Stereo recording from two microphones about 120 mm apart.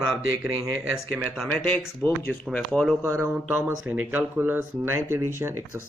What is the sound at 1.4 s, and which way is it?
Speech, 10° left (ahead or behind).